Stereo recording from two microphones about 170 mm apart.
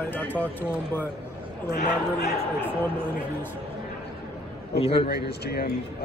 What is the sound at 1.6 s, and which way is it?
Speech, 65° left (ahead or behind).